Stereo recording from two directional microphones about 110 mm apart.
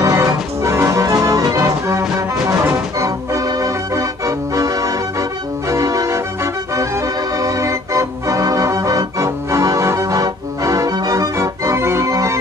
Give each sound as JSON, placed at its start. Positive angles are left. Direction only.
{"t": 0.0, "sound": "music", "side_deg": -25}
{"t": 5.7, "sound": "organ", "side_deg": -30}